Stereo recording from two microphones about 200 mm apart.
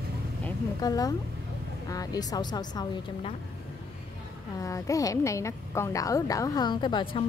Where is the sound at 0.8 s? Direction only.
20° left (ahead or behind).